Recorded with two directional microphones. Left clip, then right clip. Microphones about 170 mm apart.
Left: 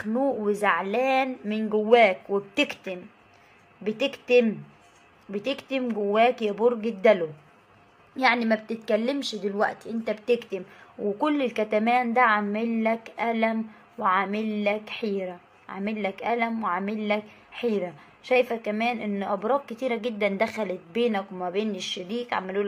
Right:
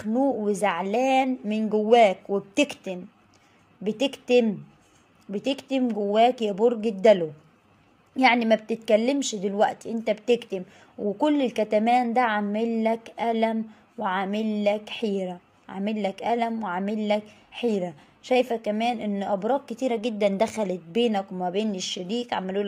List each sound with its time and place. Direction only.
0.0 s a woman's voice: 35° right (ahead or behind)
3.8 s a woman's voice: 40° right (ahead or behind)
8.2 s a woman's voice: 40° right (ahead or behind)